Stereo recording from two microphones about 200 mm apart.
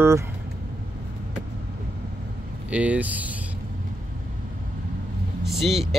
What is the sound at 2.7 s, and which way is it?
Speech, 5° right (ahead or behind).